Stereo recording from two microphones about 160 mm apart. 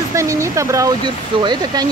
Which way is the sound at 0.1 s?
20° right (ahead or behind).